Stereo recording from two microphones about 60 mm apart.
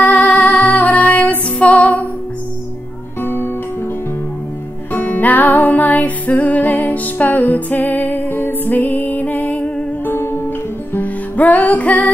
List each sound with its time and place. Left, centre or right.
0.0 s music: left
3.2 s music: left
4.9 s music: left
10.1 s music: left